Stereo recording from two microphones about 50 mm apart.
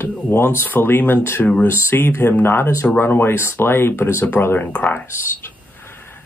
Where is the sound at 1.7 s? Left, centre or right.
Left.